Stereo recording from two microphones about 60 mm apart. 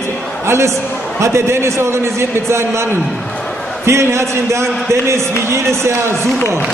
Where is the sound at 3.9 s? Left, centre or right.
Right.